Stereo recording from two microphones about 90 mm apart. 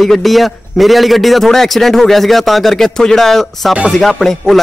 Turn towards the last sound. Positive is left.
turn(degrees=0)  # may be behind; listen again after turning